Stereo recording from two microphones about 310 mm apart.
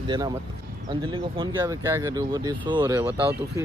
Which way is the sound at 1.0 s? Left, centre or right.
Centre.